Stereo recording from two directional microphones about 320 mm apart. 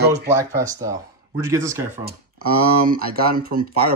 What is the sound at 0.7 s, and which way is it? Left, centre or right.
Speech, centre.